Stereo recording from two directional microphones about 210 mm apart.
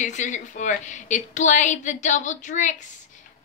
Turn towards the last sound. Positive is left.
turn(degrees=35)  # may be behind; listen again after turning